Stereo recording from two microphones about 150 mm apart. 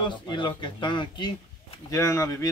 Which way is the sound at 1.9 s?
20° left (ahead or behind).